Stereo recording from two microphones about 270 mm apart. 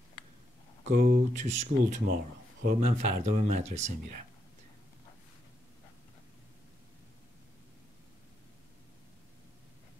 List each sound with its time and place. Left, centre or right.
0.8 s speech: right